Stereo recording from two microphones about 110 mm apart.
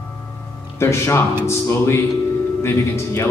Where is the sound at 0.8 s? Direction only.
25° left (ahead or behind).